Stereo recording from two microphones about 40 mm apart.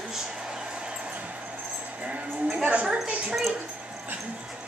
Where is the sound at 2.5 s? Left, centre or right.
Right.